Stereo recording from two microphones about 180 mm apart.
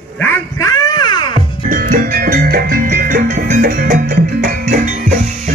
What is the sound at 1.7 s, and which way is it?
Music, 50° right (ahead or behind).